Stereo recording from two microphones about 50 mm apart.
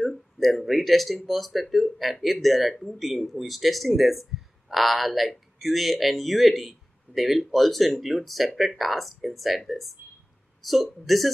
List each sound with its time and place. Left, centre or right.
0.0 s speech: centre